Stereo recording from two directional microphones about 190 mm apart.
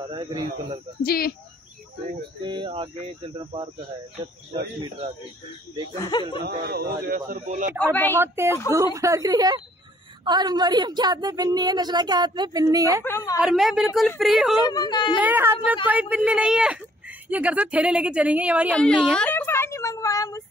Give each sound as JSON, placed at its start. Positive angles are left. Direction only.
{"t": 0.1, "sound": "a woman's voice", "side_deg": -25}
{"t": 1.0, "sound": "speech", "side_deg": 55}
{"t": 2.4, "sound": "a woman's voice", "side_deg": -25}
{"t": 5.9, "sound": "a woman's voice", "side_deg": 20}
{"t": 6.4, "sound": "speech", "side_deg": -50}
{"t": 7.8, "sound": "a woman's voice", "side_deg": 10}
{"t": 8.2, "sound": "a woman's voice", "side_deg": -15}
{"t": 13.0, "sound": "a woman's voice", "side_deg": 15}
{"t": 13.4, "sound": "a woman's voice", "side_deg": 0}
{"t": 14.7, "sound": "a woman's voice", "side_deg": 20}
{"t": 15.1, "sound": "a woman's voice", "side_deg": -10}
{"t": 18.8, "sound": "a sound", "side_deg": 5}